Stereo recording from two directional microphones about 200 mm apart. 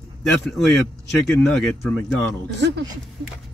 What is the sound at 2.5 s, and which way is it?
Speech, 60° right (ahead or behind).